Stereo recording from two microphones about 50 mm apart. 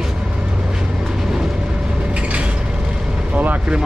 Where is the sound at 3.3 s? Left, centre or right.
Right.